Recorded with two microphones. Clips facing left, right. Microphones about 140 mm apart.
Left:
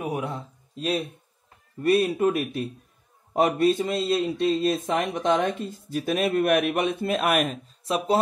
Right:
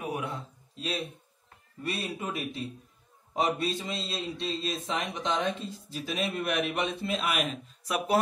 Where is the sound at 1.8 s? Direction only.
55° left (ahead or behind).